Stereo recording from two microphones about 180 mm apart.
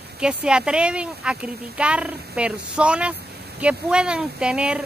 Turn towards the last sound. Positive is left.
turn(degrees=-5)  # may be behind; listen again after turning